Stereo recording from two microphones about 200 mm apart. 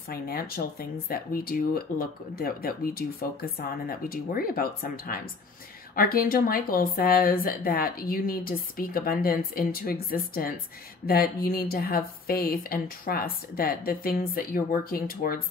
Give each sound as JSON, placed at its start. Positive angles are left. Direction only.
{"t": 0.1, "sound": "speech", "side_deg": 50}